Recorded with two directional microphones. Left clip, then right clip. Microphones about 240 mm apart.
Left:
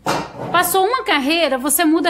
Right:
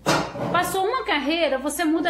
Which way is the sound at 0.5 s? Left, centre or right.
Left.